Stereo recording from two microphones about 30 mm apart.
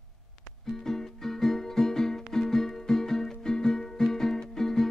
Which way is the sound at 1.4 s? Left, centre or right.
Centre.